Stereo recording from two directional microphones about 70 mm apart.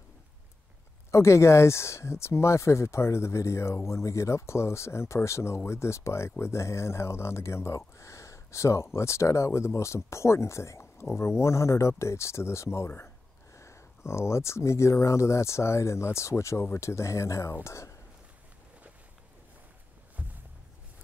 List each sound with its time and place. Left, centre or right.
1.1 s speech: left